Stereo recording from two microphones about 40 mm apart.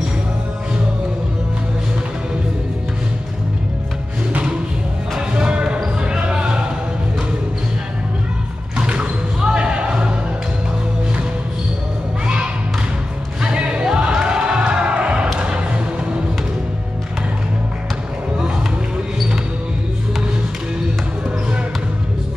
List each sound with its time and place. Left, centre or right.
4.3 s thump: right
5.3 s basketball bounce: right
8.7 s a sound: right
9.4 s basketball bounce: right
13.4 s music: right
15.3 s a sound: right